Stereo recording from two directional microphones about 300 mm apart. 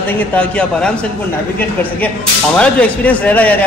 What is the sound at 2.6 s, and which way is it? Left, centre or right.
A man's voice, centre.